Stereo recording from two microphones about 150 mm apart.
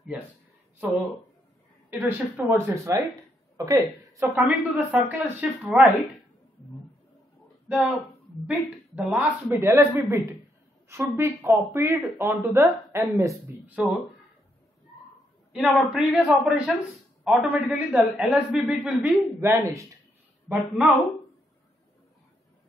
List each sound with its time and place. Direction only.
1.9 s a woman's voice: 15° right (ahead or behind)
7.6 s a woman's voice: 5° right (ahead or behind)
13.8 s a woman's voice: 10° right (ahead or behind)
15.5 s a man's voice: centre (ahead or behind)
19.4 s speech: 20° right (ahead or behind)
20.4 s a man's voice: centre (ahead or behind)